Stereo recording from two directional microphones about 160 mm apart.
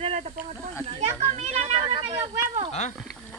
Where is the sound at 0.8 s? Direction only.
40° right (ahead or behind).